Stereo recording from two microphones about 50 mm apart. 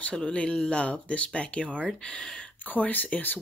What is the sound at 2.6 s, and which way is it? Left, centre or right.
Speech, left.